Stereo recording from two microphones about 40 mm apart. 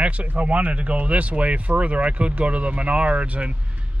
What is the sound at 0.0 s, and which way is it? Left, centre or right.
Speech, right.